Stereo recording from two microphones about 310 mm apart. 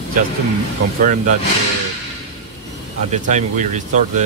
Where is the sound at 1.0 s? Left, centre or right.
Right.